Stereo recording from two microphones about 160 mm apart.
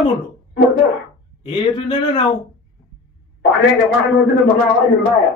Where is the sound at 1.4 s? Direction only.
35° left (ahead or behind).